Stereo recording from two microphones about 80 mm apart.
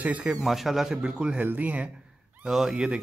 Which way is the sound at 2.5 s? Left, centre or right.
Centre.